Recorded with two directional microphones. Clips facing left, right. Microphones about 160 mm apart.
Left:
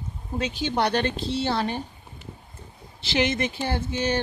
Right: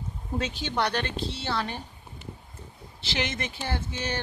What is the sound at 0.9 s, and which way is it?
Speech, 30° left (ahead or behind).